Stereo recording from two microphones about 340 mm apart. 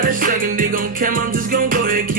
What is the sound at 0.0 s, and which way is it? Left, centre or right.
Music, right.